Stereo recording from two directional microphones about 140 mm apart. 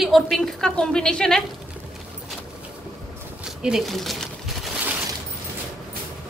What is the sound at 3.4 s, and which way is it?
Speech, 5° right (ahead or behind).